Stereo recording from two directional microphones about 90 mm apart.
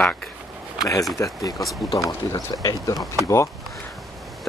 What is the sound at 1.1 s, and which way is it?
Speech, 40° left (ahead or behind).